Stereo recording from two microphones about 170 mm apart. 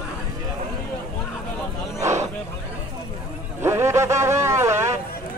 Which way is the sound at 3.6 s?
15° right (ahead or behind).